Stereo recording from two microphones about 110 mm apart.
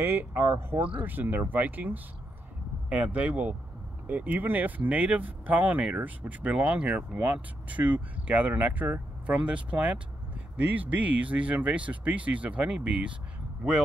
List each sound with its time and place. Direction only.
0.0 s speech: 20° right (ahead or behind)